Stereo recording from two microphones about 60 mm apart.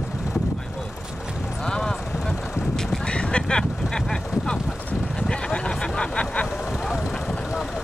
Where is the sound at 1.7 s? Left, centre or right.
Centre.